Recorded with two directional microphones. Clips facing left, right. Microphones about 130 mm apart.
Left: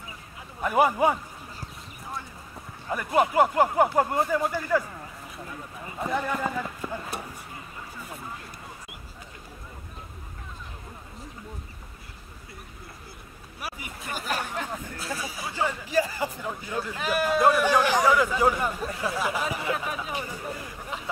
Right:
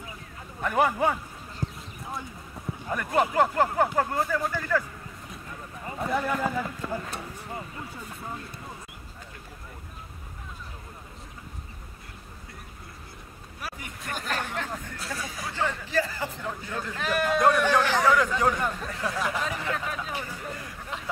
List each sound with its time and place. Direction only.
0.6 s speech: 10° left (ahead or behind)
1.6 s clip-clop: 20° right (ahead or behind)
2.9 s speech: 5° left (ahead or behind)
5.9 s speech: centre (ahead or behind)
6.8 s speech: 10° left (ahead or behind)
13.6 s speech: 10° left (ahead or behind)
20.5 s a sound: 5° left (ahead or behind)